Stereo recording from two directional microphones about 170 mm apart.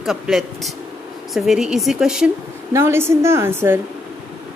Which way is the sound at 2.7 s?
15° right (ahead or behind).